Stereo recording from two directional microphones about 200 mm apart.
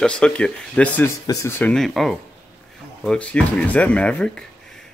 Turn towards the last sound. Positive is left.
turn(degrees=5)  # may be behind; listen again after turning